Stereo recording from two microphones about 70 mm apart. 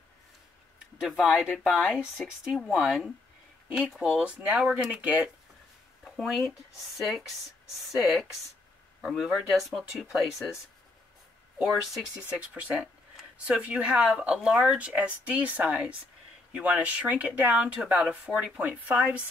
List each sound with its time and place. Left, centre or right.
1.0 s speech: centre
4.2 s speech: centre
6.1 s speech: centre
11.6 s speech: centre
12.2 s speech: centre
18.2 s speech: centre
18.6 s speech: centre